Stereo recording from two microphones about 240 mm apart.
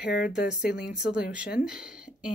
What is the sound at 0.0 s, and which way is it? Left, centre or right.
Speech, left.